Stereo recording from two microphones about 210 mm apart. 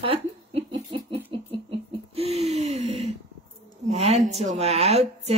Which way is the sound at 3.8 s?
30° right (ahead or behind).